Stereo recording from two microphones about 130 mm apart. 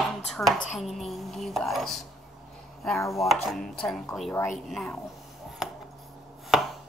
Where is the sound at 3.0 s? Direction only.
25° left (ahead or behind).